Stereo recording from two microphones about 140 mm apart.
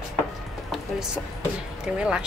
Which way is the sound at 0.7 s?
5° right (ahead or behind).